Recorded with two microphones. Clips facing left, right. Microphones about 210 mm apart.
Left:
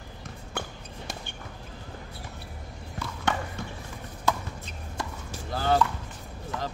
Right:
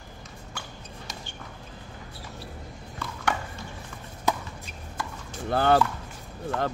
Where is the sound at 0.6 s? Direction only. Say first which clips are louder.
Left 6 dB; 55° left (ahead or behind).